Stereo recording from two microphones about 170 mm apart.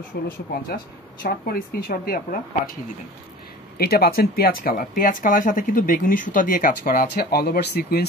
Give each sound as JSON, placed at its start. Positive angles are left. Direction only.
{"t": 0.1, "sound": "speech", "side_deg": 60}
{"t": 3.7, "sound": "speech", "side_deg": 65}